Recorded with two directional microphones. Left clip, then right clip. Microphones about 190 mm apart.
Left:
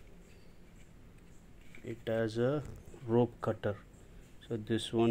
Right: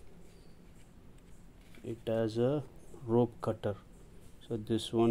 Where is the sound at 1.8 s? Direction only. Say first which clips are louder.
Right 1 dB; 15° right (ahead or behind).